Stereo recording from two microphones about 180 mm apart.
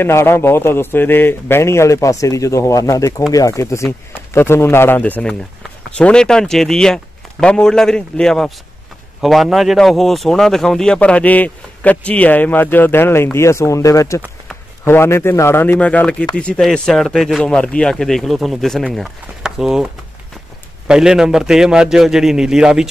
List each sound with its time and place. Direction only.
0.0 s a man's voice: 15° left (ahead or behind); by 22.8 s 5° right (ahead or behind)